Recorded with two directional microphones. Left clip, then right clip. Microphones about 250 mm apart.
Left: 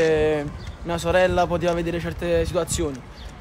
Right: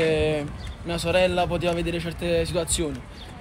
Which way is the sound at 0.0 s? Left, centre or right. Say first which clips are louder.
Left 3 dB; centre.